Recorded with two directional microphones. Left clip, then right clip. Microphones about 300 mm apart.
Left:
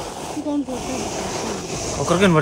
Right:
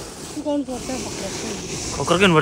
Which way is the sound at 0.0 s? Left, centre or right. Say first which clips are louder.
Left 6 dB; centre.